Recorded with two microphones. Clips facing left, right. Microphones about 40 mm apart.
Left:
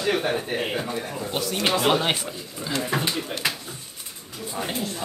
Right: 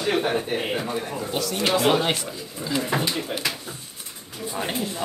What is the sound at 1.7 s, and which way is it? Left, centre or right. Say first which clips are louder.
Speech: right 1 dB; centre.